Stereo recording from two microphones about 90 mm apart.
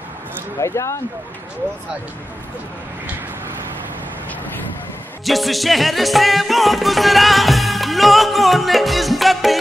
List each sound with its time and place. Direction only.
0.6 s speech: 35° left (ahead or behind)
5.2 s music: centre (ahead or behind)